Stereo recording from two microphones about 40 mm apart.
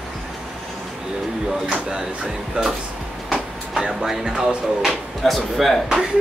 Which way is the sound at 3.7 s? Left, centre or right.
Centre.